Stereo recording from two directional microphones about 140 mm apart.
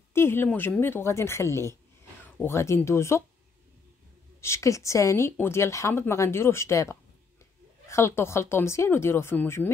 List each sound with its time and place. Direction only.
0.1 s speech: 15° left (ahead or behind)
4.4 s speech: 20° left (ahead or behind)